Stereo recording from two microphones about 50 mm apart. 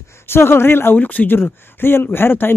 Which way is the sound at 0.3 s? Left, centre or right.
Left.